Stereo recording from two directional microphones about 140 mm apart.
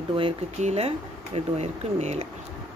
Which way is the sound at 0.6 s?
50° right (ahead or behind).